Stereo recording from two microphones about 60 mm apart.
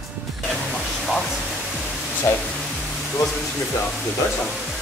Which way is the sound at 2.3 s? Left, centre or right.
Left.